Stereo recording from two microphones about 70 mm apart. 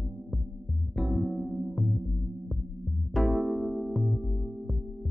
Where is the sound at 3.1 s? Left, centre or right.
Centre.